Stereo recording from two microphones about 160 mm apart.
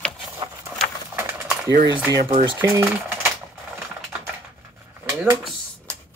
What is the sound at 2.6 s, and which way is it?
Speech, 15° right (ahead or behind).